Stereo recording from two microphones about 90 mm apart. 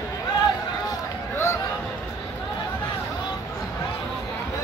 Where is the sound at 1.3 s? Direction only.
30° left (ahead or behind).